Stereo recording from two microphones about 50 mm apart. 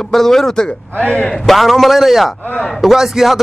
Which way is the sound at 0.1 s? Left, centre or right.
Centre.